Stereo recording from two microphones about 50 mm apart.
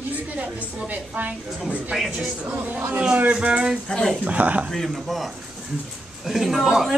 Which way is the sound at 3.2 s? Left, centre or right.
Right.